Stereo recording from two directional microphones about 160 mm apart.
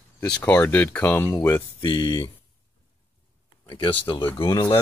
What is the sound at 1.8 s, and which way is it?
Speech, 30° left (ahead or behind).